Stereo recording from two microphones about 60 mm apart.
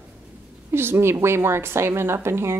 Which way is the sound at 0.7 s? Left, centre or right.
Right.